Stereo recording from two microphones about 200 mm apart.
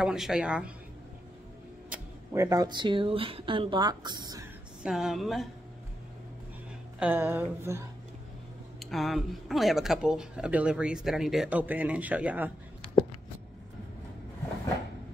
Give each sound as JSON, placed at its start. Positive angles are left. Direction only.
{"t": 0.0, "sound": "speech", "side_deg": -5}
{"t": 1.9, "sound": "speech", "side_deg": -15}
{"t": 4.8, "sound": "speech", "side_deg": 0}
{"t": 7.0, "sound": "a sound", "side_deg": -10}
{"t": 8.7, "sound": "speech", "side_deg": 0}